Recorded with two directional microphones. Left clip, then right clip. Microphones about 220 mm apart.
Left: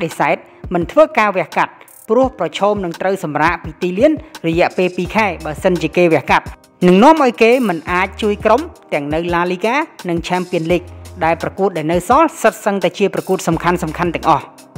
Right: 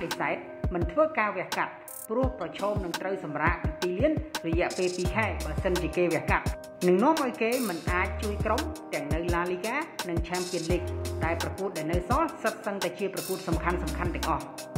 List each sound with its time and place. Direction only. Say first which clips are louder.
0.2 s a woman's voice: left 14 dB; 50° left (ahead or behind)
3.8 s a woman's voice: left 10 dB; centre (ahead or behind)
4.5 s a woman's voice: left 14 dB; 55° left (ahead or behind)